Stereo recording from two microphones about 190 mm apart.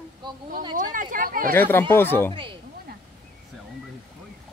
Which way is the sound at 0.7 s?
45° right (ahead or behind).